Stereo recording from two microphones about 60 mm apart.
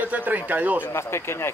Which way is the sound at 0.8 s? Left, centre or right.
Left.